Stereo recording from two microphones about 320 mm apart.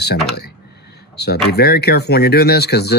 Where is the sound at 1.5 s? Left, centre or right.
Left.